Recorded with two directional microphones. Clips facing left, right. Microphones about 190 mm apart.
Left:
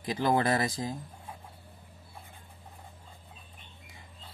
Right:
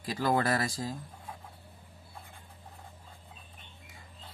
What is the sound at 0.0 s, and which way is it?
Speech, 20° left (ahead or behind).